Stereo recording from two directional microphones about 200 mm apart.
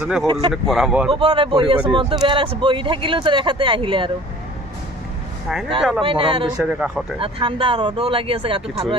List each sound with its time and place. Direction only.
0.0 s speech: centre (ahead or behind)
1.1 s speech: 25° right (ahead or behind)
6.0 s speech: 25° right (ahead or behind)
6.6 s speech: 5° right (ahead or behind)
7.2 s speech: 25° right (ahead or behind)